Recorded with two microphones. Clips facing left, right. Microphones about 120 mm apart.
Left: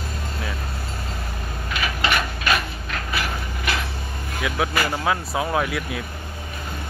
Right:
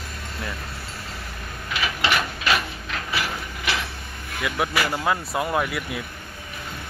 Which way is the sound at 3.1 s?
15° right (ahead or behind).